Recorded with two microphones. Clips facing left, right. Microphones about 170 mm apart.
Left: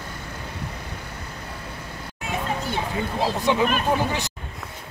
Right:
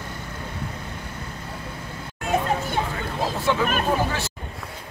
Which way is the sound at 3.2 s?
15° left (ahead or behind).